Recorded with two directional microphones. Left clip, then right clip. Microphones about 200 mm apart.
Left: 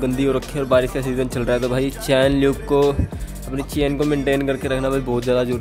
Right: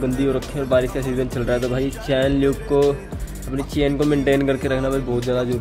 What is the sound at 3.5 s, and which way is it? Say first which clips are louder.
Speech: even; 15° left (ahead or behind).